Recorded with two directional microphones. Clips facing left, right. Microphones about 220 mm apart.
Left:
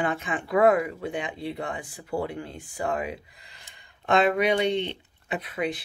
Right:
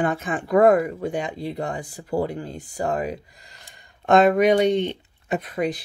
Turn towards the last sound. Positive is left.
turn(degrees=-45)  # may be behind; listen again after turning